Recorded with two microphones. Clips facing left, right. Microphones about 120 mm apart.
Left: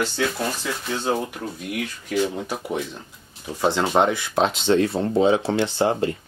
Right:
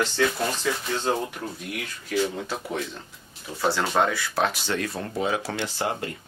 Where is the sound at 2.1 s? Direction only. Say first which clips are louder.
Left 2 dB; 15° left (ahead or behind).